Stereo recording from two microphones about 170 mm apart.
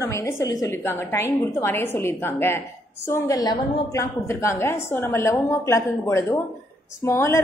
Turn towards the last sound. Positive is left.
turn(degrees=15)  # may be behind; listen again after turning